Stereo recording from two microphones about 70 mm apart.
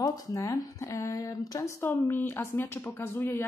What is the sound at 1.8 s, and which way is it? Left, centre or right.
A woman's voice, left.